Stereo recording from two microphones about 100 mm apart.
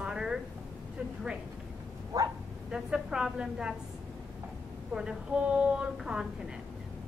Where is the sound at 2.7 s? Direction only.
10° right (ahead or behind).